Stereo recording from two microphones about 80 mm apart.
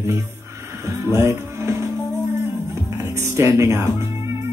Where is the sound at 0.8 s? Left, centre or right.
Right.